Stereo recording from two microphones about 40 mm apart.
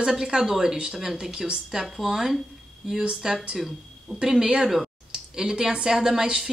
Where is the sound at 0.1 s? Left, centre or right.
Centre.